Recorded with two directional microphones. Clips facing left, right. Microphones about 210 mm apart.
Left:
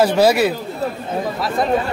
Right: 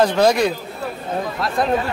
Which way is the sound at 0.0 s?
5° left (ahead or behind).